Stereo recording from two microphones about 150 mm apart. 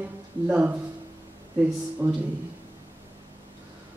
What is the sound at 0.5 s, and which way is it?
Speech, 10° right (ahead or behind).